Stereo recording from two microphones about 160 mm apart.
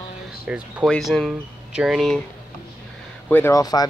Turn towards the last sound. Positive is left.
turn(degrees=25)  # may be behind; listen again after turning